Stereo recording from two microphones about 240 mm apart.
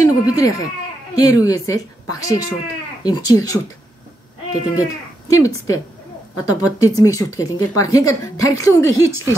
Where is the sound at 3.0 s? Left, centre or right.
Centre.